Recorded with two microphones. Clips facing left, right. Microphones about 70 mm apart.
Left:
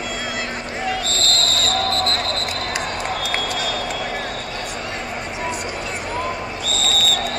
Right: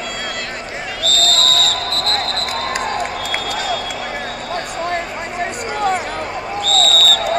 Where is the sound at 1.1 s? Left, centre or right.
Left.